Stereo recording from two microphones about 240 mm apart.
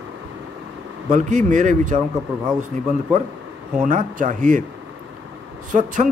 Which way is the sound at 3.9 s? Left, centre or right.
Right.